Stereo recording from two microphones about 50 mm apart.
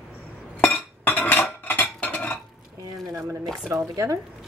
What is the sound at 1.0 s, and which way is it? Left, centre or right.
Cutlery, left.